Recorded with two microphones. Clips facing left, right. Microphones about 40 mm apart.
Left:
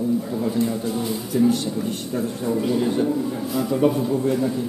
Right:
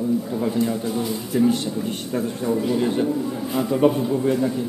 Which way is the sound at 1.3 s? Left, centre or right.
Centre.